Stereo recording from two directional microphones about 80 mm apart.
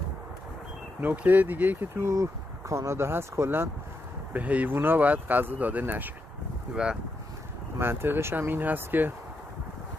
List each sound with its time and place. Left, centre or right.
1.0 s speech: right
2.0 s speech: right
4.3 s speech: centre
6.7 s speech: centre
7.8 s speech: right